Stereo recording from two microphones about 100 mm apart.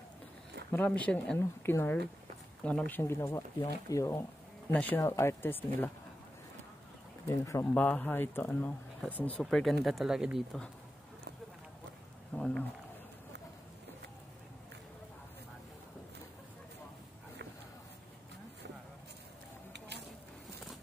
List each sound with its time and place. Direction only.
0.7 s speech: 15° left (ahead or behind)
1.4 s speech: 25° left (ahead or behind)
2.6 s speech: 10° left (ahead or behind)
3.0 s speech: 25° left (ahead or behind)
4.7 s speech: 20° left (ahead or behind)
7.2 s speech: 30° left (ahead or behind)
7.7 s speech: 15° left (ahead or behind)
9.4 s speech: 5° left (ahead or behind)
12.4 s speech: 10° left (ahead or behind)